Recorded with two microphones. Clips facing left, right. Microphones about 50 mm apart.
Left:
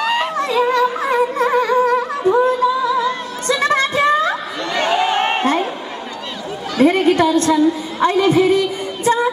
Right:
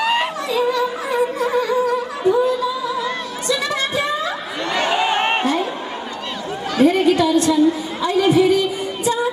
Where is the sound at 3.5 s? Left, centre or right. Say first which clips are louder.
Left 5 dB; left.